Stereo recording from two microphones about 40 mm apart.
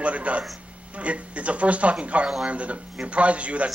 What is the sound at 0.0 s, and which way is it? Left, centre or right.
Speech, right.